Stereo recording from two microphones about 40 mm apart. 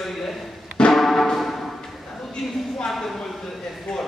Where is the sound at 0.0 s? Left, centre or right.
Centre.